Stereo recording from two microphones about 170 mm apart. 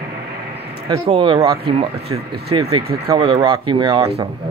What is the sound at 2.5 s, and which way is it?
Speech, 35° right (ahead or behind).